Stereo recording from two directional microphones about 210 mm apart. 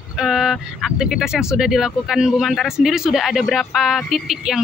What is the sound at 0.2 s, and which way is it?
Speech, centre (ahead or behind).